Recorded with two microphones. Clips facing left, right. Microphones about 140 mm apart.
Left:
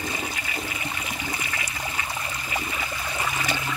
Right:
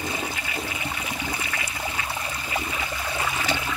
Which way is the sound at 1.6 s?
10° right (ahead or behind).